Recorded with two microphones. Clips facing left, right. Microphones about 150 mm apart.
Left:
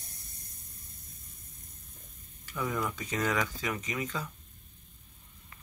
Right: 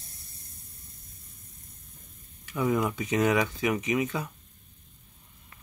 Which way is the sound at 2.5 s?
20° right (ahead or behind).